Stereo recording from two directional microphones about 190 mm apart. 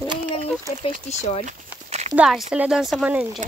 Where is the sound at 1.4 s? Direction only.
35° right (ahead or behind).